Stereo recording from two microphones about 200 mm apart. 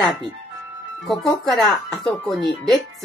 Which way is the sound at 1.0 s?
Centre (ahead or behind).